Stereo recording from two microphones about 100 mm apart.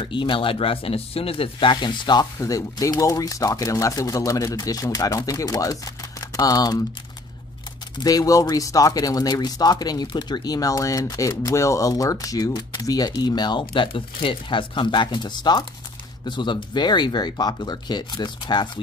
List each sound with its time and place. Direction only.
0.0 s speech: 55° left (ahead or behind)
2.3 s speech: 35° left (ahead or behind)
8.0 s speech: 35° left (ahead or behind)